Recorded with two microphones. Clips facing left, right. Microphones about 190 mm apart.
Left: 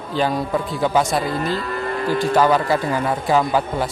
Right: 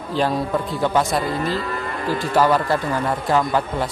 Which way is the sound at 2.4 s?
Centre (ahead or behind).